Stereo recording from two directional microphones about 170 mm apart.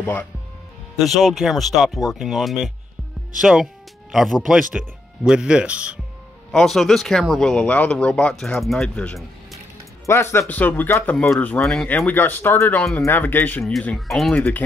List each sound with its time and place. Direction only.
0.0 s speech: 10° left (ahead or behind)
10.0 s speech: 15° left (ahead or behind)
12.1 s speech: 10° left (ahead or behind)